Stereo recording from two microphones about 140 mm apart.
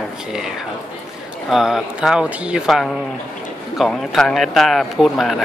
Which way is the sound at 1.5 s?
5° right (ahead or behind).